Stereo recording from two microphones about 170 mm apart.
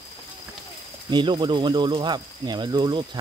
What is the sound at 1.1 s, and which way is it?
Speech, 25° right (ahead or behind).